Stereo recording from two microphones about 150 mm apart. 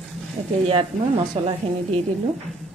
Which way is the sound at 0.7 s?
35° right (ahead or behind).